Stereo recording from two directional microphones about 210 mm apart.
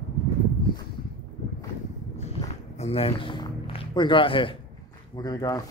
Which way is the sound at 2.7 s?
30° left (ahead or behind).